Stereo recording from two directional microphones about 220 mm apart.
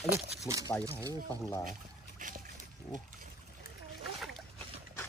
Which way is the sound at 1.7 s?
35° right (ahead or behind).